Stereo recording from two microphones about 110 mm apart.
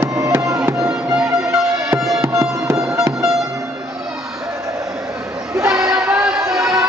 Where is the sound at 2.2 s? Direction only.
25° right (ahead or behind).